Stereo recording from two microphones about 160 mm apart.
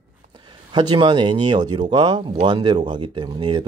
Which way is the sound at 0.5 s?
30° right (ahead or behind).